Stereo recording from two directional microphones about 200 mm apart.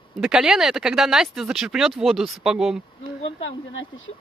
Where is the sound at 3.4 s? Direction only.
70° left (ahead or behind).